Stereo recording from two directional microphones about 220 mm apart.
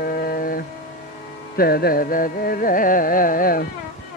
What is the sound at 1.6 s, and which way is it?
Carnatic music, 45° left (ahead or behind).